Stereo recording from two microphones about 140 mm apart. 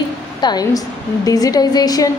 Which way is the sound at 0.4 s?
30° left (ahead or behind).